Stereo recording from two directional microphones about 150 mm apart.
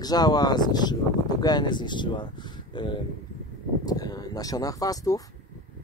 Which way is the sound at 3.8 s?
25° left (ahead or behind).